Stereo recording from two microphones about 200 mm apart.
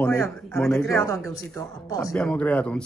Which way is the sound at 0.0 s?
10° left (ahead or behind).